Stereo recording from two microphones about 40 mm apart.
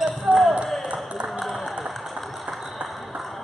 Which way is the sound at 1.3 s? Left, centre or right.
Centre.